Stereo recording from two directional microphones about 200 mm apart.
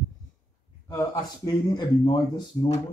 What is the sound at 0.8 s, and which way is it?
Speech, 20° left (ahead or behind).